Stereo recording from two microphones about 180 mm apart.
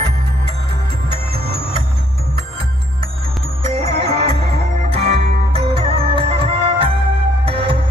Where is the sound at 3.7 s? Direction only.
35° right (ahead or behind).